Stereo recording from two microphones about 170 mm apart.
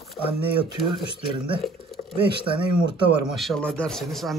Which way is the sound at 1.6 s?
Centre (ahead or behind).